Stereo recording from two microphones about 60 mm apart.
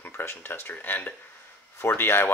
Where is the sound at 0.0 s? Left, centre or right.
Left.